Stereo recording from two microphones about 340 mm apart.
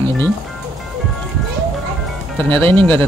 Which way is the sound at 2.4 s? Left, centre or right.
Centre.